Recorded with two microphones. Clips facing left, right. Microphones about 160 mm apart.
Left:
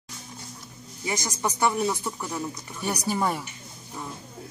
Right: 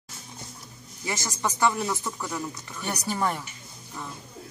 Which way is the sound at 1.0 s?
20° left (ahead or behind).